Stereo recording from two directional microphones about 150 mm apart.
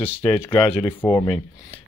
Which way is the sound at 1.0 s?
25° left (ahead or behind).